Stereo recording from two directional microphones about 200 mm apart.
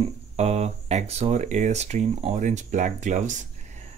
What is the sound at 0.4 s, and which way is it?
Speech, 30° right (ahead or behind).